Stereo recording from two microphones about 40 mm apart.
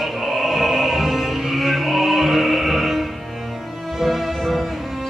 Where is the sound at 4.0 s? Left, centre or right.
Centre.